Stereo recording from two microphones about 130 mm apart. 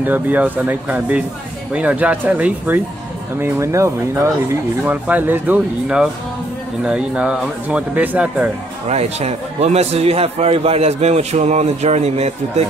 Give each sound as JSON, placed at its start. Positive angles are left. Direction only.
{"t": 0.0, "sound": "speech", "side_deg": -15}
{"t": 8.8, "sound": "a man's voice", "side_deg": -55}